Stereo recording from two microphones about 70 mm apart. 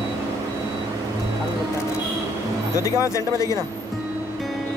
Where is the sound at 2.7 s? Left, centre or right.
Left.